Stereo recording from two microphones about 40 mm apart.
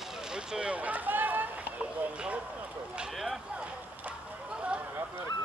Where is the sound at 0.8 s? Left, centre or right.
Right.